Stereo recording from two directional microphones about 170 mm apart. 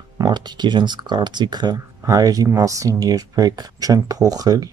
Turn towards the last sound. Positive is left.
turn(degrees=-20)  # may be behind; listen again after turning